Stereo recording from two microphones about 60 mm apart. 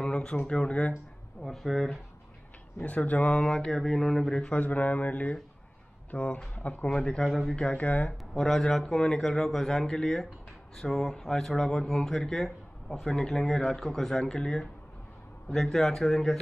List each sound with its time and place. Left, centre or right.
0.0 s a sound: centre
0.5 s a man's voice: centre
1.4 s speech: centre
2.8 s speech: left
3.5 s a man's voice: centre; by 6.9 s left
6.9 s a man's voice: centre
7.2 s speech: centre
7.7 s speech: left
8.4 s a man's voice: centre